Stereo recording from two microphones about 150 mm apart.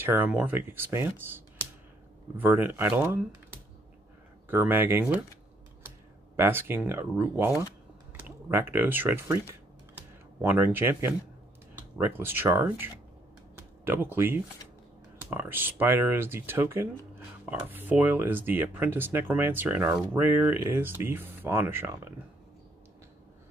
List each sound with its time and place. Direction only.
0.0 s speech: 15° right (ahead or behind)
10.4 s speech: 15° right (ahead or behind)
12.2 s speech: 15° right (ahead or behind)
13.6 s a sound: 15° right (ahead or behind)
15.2 s speech: 15° right (ahead or behind)